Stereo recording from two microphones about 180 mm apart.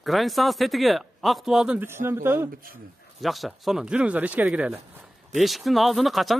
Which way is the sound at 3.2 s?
Centre (ahead or behind).